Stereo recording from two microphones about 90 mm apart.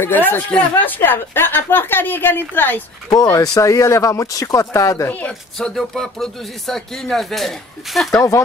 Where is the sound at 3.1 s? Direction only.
40° left (ahead or behind).